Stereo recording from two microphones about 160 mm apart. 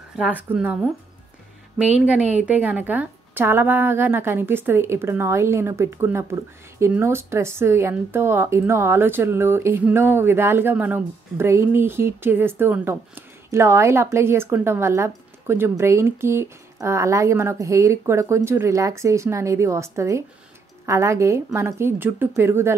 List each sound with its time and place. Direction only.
0.1 s a woman's voice: 5° right (ahead or behind)
1.8 s a woman's voice: 5° right (ahead or behind)